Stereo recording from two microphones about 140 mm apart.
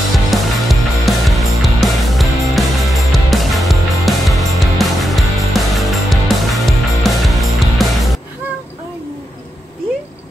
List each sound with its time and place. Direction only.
0.3 s music: centre (ahead or behind)